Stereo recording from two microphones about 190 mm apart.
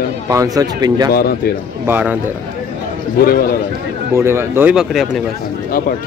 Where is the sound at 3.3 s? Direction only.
50° left (ahead or behind).